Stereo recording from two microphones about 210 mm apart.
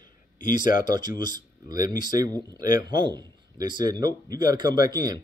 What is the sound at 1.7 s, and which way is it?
Speech, 40° left (ahead or behind).